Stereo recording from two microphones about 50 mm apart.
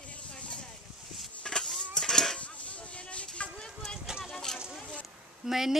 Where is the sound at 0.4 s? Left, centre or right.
Left.